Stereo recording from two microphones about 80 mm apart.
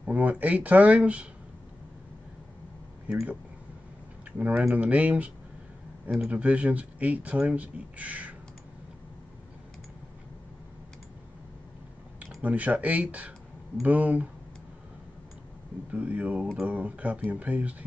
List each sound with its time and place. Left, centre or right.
0.0 s speech: centre
4.4 s speech: centre
12.4 s speech: centre
15.9 s speech: centre